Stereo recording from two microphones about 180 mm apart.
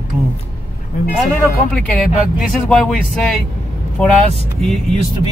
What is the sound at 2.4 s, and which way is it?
Speech, 5° left (ahead or behind).